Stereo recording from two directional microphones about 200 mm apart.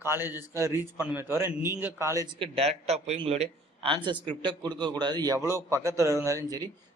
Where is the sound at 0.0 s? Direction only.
10° right (ahead or behind).